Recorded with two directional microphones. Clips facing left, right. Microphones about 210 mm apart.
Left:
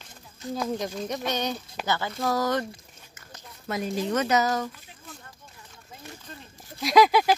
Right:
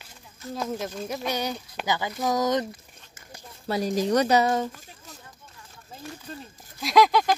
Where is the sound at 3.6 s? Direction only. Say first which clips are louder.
Right 3 dB; 35° right (ahead or behind).